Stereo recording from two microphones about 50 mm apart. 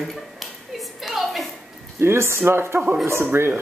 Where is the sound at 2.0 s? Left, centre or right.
Right.